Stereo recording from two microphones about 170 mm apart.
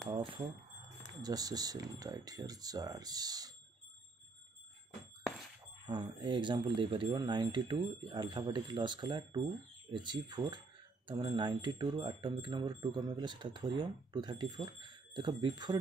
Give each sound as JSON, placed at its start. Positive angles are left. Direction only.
{"t": 0.1, "sound": "speech", "side_deg": -30}
{"t": 5.9, "sound": "speech", "side_deg": -25}